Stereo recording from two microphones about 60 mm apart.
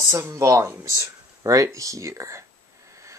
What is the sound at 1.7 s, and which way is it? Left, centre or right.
Speech, right.